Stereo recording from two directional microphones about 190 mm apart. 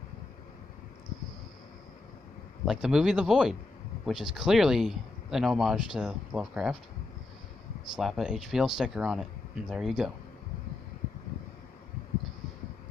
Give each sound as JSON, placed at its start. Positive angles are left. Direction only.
{"t": 2.6, "sound": "speech", "side_deg": -5}
{"t": 7.9, "sound": "speech", "side_deg": 0}